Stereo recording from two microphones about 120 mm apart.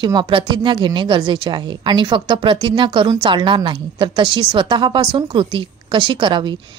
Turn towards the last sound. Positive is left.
turn(degrees=-40)  # may be behind; listen again after turning